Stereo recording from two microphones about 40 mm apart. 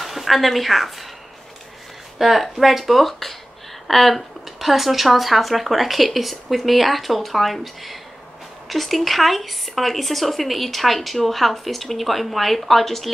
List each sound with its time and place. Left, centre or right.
0.0 s a woman's voice: centre
2.1 s speech: centre